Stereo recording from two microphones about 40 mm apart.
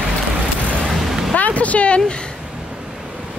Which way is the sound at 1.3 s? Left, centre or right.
Left.